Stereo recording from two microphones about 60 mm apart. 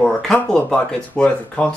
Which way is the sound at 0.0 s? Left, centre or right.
Centre.